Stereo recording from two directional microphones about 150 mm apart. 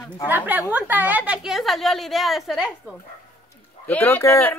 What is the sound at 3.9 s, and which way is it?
Speech, 10° left (ahead or behind).